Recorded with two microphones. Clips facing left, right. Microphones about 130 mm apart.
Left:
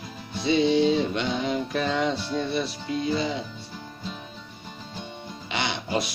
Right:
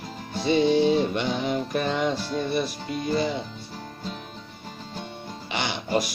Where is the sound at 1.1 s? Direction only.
5° right (ahead or behind).